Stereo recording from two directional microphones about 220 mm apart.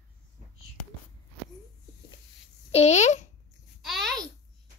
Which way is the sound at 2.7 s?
30° left (ahead or behind).